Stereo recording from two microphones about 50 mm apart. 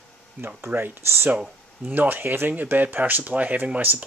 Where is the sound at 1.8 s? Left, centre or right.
Right.